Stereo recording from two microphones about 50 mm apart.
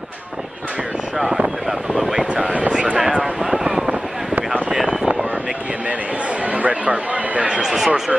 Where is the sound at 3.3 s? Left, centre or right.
Centre.